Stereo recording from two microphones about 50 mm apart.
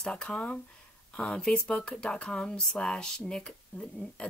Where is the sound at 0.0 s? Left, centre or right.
Centre.